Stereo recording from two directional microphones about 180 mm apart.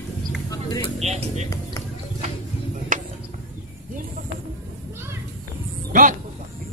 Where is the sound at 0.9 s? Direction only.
35° right (ahead or behind).